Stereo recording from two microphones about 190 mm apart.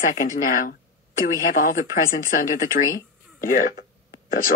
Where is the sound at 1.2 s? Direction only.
45° left (ahead or behind).